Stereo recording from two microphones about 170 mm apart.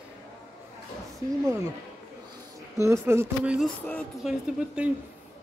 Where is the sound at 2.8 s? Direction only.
15° right (ahead or behind).